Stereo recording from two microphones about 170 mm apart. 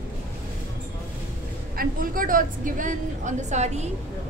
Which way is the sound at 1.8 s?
55° right (ahead or behind).